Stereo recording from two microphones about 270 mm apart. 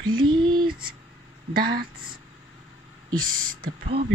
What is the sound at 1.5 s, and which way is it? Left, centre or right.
Speech, right.